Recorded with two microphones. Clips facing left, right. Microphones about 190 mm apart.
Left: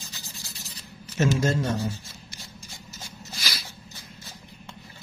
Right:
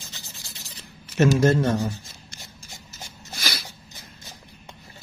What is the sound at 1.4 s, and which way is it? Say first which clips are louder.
Speech: right 5 dB; 65° right (ahead or behind).